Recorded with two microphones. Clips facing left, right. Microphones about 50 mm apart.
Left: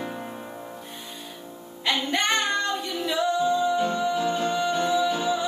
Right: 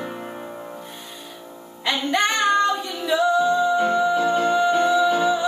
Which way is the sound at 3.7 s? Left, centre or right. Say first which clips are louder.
Right 5 dB; right.